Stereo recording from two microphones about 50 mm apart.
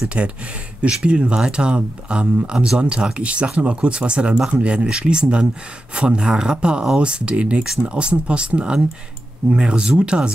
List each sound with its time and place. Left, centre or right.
0.2 s speech: right